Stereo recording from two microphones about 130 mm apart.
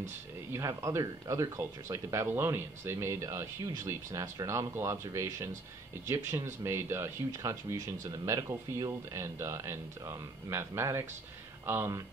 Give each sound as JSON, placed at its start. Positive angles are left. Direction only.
{"t": 0.5, "sound": "speech", "side_deg": -25}